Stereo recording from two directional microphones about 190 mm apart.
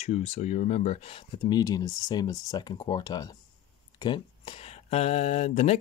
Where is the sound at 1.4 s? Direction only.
20° left (ahead or behind).